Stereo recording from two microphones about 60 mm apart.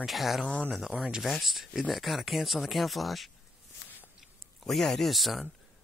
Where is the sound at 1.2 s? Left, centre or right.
Centre.